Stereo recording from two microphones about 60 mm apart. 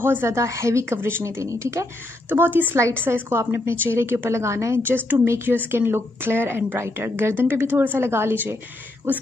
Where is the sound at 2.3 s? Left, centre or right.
Right.